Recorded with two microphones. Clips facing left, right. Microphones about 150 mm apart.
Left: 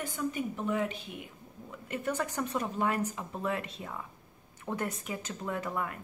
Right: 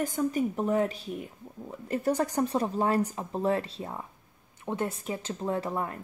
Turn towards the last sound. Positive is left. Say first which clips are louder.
# right 4 dB
turn(degrees=-30)  # may be behind; listen again after turning